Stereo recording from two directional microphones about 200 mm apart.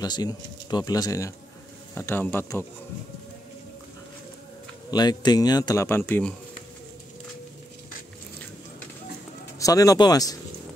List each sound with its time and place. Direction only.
0.0 s speech: 20° left (ahead or behind)
4.9 s speech: 20° left (ahead or behind)
9.6 s speech: 15° left (ahead or behind)